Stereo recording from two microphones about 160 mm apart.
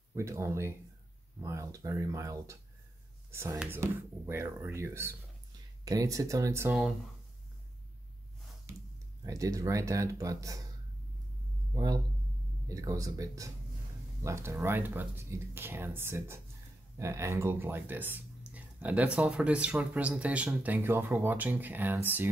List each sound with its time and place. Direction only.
0.1 s speech: 15° right (ahead or behind)
9.2 s speech: 20° right (ahead or behind)
11.7 s speech: 25° right (ahead or behind)